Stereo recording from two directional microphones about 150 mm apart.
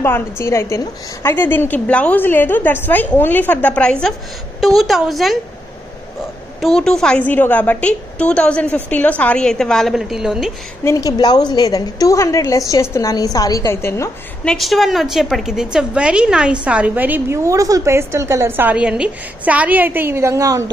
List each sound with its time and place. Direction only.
0.0 s a woman's voice: 15° left (ahead or behind); by 5.4 s centre (ahead or behind)
6.6 s a woman's voice: 5° left (ahead or behind)
10.8 s a woman's voice: 20° left (ahead or behind)
14.4 s a woman's voice: 5° left (ahead or behind); by 20.7 s 20° right (ahead or behind)